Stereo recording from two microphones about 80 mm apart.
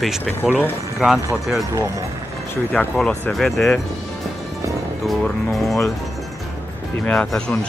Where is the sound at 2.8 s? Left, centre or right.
Centre.